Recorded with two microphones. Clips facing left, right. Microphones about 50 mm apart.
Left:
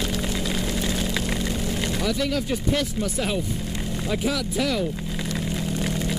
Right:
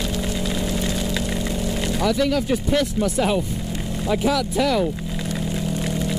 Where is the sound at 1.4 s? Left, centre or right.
Centre.